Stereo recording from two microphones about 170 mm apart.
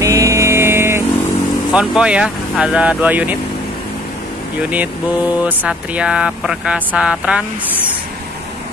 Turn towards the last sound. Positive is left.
turn(degrees=-5)  # may be behind; listen again after turning